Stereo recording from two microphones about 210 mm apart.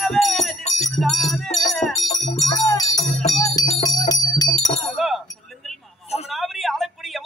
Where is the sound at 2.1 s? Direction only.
15° left (ahead or behind).